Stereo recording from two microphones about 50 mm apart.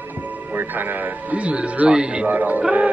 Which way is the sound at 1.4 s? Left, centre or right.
Right.